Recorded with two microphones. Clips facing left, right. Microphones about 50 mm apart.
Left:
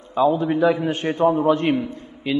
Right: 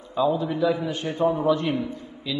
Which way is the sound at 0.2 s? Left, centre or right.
Left.